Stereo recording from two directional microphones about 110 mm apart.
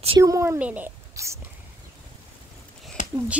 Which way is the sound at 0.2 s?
25° right (ahead or behind).